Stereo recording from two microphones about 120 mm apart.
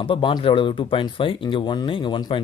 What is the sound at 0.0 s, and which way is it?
Speech, 45° left (ahead or behind).